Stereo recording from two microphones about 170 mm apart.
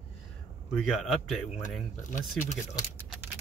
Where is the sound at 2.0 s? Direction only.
50° left (ahead or behind).